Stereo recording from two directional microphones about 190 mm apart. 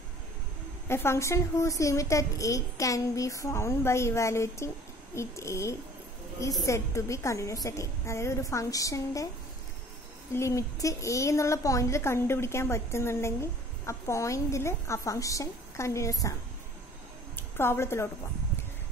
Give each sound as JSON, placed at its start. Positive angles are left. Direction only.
{"t": 0.8, "sound": "a woman's voice", "side_deg": 15}
{"t": 10.3, "sound": "a woman's voice", "side_deg": 15}
{"t": 17.4, "sound": "a woman's voice", "side_deg": 10}